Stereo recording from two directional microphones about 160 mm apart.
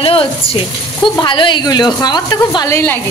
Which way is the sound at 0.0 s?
35° left (ahead or behind).